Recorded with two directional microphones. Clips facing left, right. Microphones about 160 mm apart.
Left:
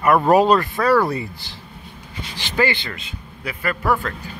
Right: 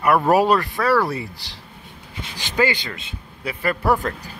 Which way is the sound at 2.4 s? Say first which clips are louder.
Even; 15° right (ahead or behind).